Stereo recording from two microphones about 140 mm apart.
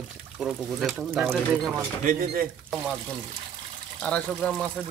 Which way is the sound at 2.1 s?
90° right.